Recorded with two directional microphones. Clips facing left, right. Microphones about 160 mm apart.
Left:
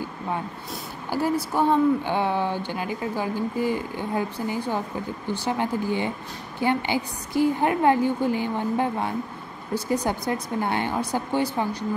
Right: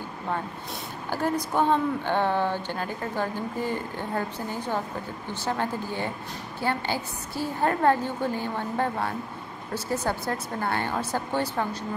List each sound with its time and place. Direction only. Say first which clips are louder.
1.1 s speech: left 2 dB; 10° left (ahead or behind)